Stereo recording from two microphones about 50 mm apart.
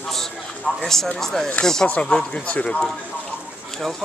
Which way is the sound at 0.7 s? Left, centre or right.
Left.